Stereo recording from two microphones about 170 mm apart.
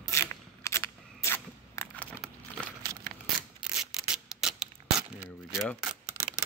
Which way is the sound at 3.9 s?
5° right (ahead or behind).